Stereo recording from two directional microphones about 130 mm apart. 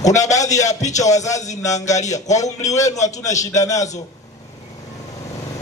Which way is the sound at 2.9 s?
65° left (ahead or behind).